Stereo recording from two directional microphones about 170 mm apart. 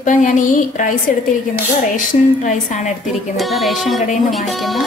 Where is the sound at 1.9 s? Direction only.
50° left (ahead or behind).